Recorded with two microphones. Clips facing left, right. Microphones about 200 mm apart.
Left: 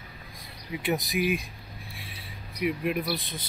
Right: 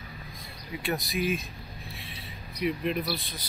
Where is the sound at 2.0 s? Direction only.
10° left (ahead or behind).